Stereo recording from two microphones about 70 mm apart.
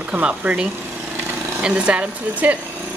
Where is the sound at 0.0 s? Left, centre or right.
Centre.